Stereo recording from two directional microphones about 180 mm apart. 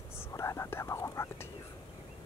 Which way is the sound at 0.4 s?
15° left (ahead or behind).